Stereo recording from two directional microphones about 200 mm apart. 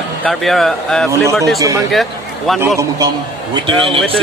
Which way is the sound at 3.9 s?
25° right (ahead or behind).